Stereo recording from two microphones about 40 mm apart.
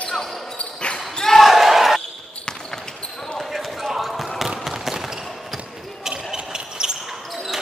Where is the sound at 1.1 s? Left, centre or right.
Centre.